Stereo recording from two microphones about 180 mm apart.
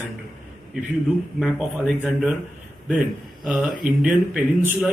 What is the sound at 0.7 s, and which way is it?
Speech, 5° right (ahead or behind).